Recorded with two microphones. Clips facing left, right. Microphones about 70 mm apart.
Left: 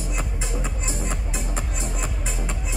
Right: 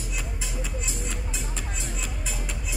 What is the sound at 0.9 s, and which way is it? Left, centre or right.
Music, left.